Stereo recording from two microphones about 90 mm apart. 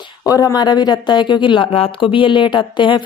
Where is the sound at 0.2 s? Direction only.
45° left (ahead or behind).